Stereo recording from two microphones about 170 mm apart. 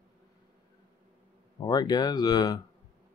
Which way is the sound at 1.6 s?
25° left (ahead or behind).